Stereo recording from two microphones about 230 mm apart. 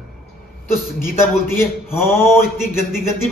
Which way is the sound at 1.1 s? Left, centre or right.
Centre.